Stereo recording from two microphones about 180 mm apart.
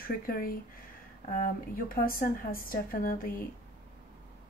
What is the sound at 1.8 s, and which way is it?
Speech, 55° left (ahead or behind).